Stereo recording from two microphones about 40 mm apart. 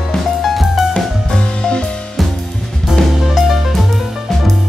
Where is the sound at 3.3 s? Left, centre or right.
Centre.